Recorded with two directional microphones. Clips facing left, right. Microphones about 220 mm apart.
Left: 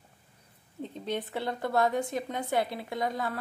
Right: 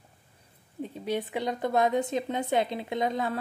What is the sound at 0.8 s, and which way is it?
A woman's voice, 10° right (ahead or behind).